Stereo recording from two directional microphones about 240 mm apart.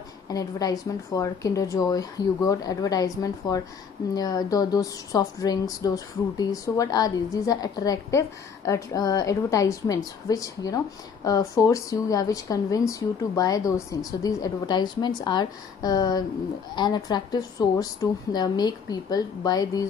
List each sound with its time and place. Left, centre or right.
0.3 s speech: centre